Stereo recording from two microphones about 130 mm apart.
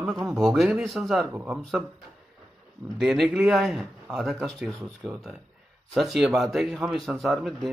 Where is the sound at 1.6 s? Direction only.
Centre (ahead or behind).